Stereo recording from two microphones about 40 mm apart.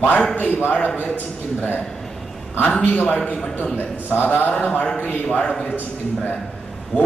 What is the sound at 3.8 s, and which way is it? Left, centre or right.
A man's voice, left.